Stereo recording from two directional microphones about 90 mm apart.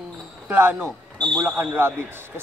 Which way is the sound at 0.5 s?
25° right (ahead or behind).